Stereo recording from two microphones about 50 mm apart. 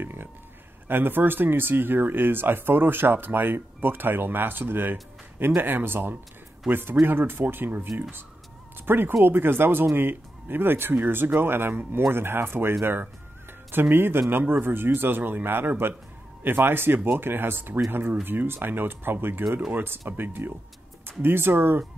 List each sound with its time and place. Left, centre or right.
0.0 s speech: right